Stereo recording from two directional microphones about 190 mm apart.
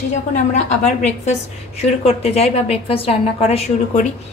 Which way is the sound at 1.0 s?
35° left (ahead or behind).